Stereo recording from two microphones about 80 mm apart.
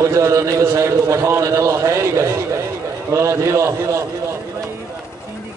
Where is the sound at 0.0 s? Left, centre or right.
Right.